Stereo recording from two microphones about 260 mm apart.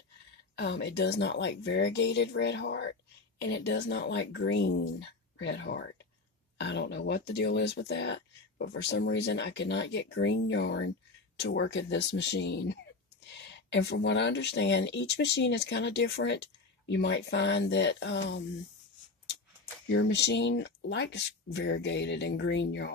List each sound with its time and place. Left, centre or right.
0.6 s speech: left
19.9 s speech: left